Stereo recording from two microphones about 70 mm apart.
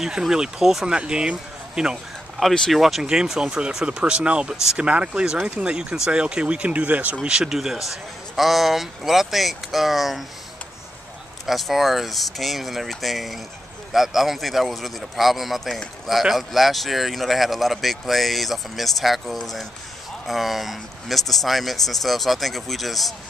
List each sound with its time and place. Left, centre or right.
0.0 s speech: centre
2.7 s speech: centre; by 7.2 s right
7.2 s speech: centre
11.4 s speech: centre